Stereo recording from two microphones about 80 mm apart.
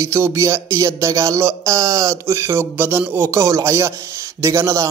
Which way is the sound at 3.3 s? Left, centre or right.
Right.